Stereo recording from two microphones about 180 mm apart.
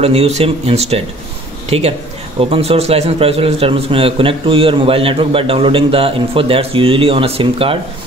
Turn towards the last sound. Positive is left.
turn(degrees=-30)  # may be behind; listen again after turning